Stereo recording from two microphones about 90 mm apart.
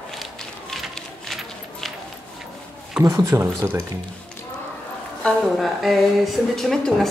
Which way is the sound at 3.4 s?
25° right (ahead or behind).